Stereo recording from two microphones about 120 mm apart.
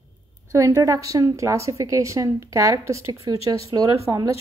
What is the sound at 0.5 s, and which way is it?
Speech, 25° right (ahead or behind).